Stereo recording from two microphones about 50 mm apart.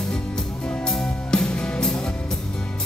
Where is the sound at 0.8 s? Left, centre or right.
Centre.